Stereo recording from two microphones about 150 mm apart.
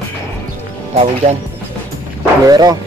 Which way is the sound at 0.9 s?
45° right (ahead or behind).